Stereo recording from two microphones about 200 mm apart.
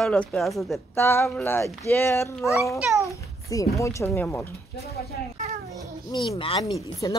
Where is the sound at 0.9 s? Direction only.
10° left (ahead or behind).